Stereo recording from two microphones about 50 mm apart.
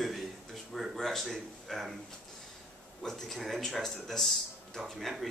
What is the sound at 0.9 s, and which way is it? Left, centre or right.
Speech, centre.